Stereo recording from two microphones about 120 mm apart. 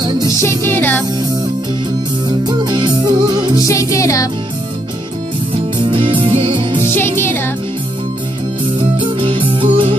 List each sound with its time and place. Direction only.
0.4 s music: 20° left (ahead or behind)
2.2 s music: 40° right (ahead or behind)
3.6 s music: 25° left (ahead or behind)
5.5 s music: 45° right (ahead or behind)
7.0 s music: 20° left (ahead or behind)
8.7 s music: 40° right (ahead or behind)